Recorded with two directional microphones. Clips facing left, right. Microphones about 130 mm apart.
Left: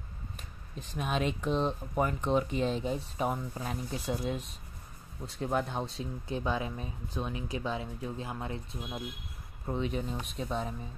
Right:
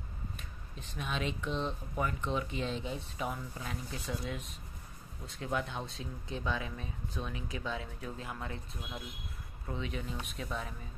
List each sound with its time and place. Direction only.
0.7 s speech: 45° left (ahead or behind); by 10.7 s 30° left (ahead or behind)